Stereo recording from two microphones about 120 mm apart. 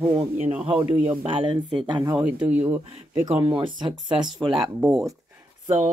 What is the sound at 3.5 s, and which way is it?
Speech, 40° right (ahead or behind).